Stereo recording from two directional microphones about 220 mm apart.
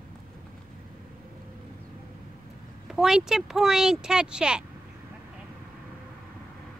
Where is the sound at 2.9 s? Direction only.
Centre (ahead or behind).